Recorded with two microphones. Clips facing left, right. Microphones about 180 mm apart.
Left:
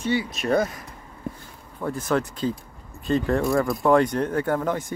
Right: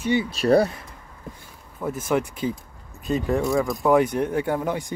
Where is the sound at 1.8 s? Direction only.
10° right (ahead or behind).